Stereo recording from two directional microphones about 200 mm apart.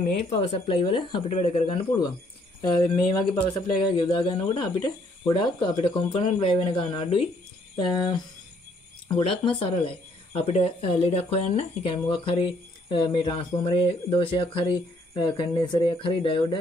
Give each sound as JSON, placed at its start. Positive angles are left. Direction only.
{"t": 0.2, "sound": "speech", "side_deg": 30}
{"t": 9.2, "sound": "speech", "side_deg": 25}